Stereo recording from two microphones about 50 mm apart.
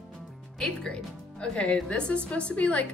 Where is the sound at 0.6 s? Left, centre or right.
Centre.